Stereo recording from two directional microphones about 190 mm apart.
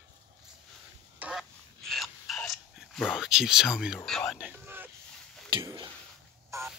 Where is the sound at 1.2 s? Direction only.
10° right (ahead or behind).